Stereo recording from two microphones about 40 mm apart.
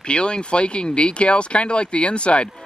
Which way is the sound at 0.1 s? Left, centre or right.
Left.